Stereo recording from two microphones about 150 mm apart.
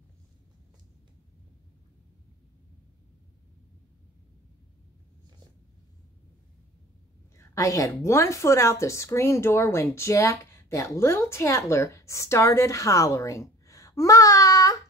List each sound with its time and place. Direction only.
7.3 s a woman's voice: 20° left (ahead or behind)